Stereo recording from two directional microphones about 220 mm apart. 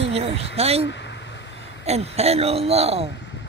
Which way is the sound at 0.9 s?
55° left (ahead or behind).